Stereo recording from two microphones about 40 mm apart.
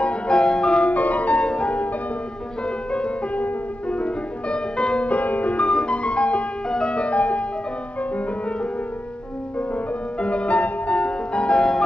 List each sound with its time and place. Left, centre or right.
0.0 s music: left
0.8 s music: left
1.4 s music: left
3.3 s music: left
5.1 s music: left
5.7 s music: left
10.2 s music: left